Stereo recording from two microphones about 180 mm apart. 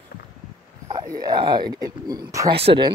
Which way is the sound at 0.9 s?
20° right (ahead or behind).